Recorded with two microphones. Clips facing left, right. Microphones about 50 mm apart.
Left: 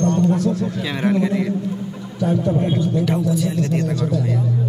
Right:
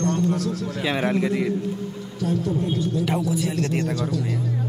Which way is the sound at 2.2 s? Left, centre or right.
Left.